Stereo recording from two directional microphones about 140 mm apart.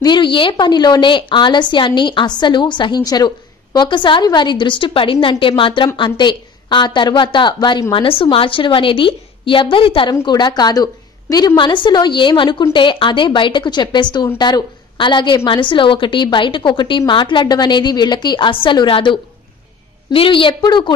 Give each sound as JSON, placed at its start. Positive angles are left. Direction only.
{"t": 0.0, "sound": "a woman's voice", "side_deg": 35}